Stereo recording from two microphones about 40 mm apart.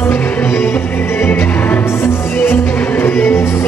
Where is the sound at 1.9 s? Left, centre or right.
Left.